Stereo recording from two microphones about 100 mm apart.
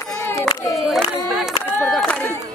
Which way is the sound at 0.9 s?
5° right (ahead or behind).